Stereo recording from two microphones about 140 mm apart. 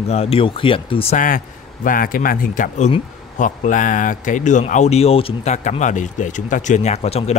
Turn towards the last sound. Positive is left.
turn(degrees=50)  # may be behind; listen again after turning